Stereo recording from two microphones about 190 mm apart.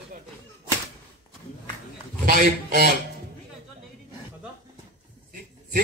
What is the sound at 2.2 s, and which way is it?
Speech, 50° right (ahead or behind).